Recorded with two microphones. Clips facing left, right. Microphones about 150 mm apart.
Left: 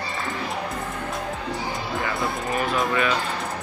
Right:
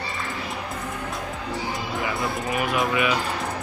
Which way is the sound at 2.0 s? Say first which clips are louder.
Even; 20° right (ahead or behind).